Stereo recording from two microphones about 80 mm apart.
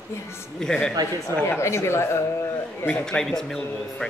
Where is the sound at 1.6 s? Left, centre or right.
Left.